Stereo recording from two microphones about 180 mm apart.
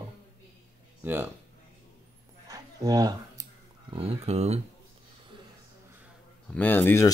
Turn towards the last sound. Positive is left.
turn(degrees=15)  # may be behind; listen again after turning